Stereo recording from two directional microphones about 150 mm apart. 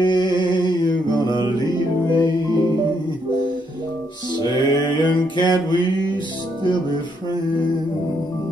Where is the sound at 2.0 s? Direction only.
30° left (ahead or behind).